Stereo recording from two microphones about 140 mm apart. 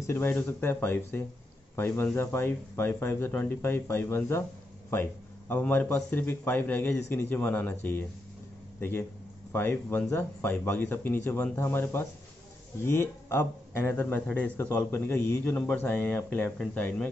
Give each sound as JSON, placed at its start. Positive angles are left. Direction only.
{"t": 0.0, "sound": "a man's voice", "side_deg": 15}